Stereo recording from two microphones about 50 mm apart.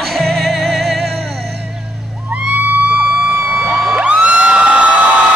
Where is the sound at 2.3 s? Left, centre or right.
Right.